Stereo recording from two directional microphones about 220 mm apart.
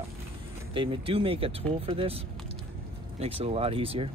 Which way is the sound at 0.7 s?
25° right (ahead or behind).